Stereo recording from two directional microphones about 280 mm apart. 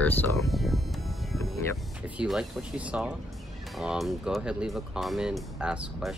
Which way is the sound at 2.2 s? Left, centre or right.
Centre.